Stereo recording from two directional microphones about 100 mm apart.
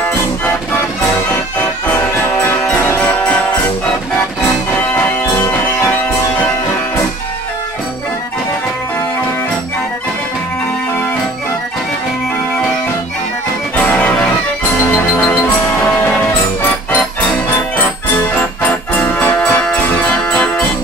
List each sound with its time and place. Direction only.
2.6 s music: 25° left (ahead or behind)
13.7 s music: 15° left (ahead or behind)
15.3 s music: 20° left (ahead or behind)
17.7 s music: 20° left (ahead or behind)